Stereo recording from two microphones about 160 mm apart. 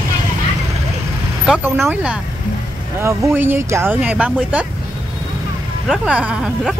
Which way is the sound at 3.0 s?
15° right (ahead or behind).